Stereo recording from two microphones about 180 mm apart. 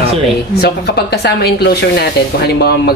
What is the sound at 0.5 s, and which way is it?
Speech, 65° left (ahead or behind).